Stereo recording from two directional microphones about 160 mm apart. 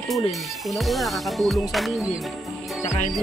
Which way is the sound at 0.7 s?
Centre (ahead or behind).